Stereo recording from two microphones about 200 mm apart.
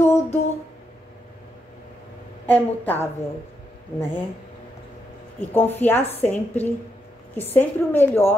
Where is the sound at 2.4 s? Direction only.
10° left (ahead or behind).